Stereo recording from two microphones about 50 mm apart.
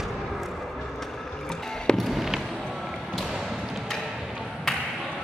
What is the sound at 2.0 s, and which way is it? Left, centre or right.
Fireworks, centre.